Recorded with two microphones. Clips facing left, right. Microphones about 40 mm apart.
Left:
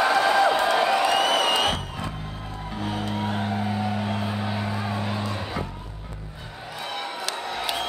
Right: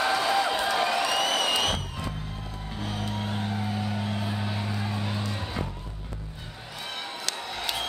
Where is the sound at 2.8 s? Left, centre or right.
Centre.